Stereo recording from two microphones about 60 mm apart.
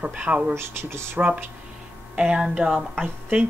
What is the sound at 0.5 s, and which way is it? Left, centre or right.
Speech, right.